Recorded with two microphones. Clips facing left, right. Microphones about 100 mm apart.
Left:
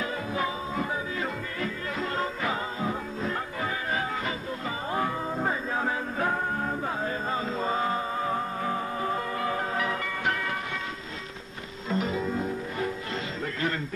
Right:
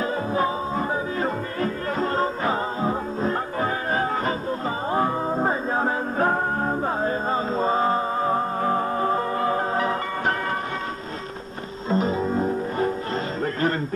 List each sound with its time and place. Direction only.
0.0 s music: 35° right (ahead or behind)
11.9 s music: 35° right (ahead or behind)